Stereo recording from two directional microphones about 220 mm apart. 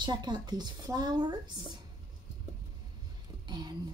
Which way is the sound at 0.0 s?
20° right (ahead or behind).